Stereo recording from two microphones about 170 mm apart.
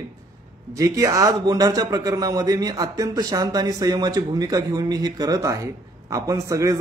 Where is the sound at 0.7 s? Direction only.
20° right (ahead or behind).